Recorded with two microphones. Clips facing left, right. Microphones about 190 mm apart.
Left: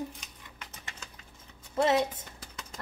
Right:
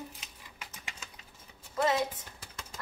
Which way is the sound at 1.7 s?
25° left (ahead or behind).